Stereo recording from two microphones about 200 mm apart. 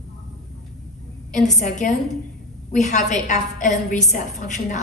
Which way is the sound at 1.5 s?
40° left (ahead or behind).